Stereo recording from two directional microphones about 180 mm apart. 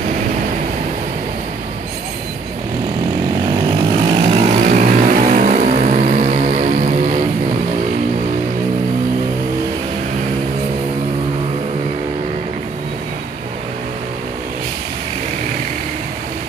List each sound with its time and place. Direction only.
3.5 s vehicle: 30° right (ahead or behind)